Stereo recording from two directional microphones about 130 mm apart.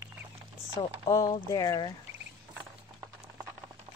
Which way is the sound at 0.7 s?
25° left (ahead or behind).